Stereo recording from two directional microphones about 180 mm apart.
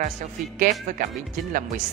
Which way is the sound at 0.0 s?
45° right (ahead or behind).